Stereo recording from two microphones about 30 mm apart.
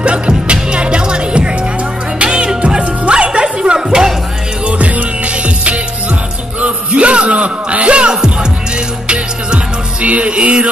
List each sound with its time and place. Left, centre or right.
0.5 s music: right
4.6 s music: right
6.6 s a sound: right
8.1 s music: right
10.0 s music: right